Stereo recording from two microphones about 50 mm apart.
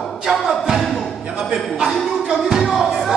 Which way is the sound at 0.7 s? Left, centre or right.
Centre.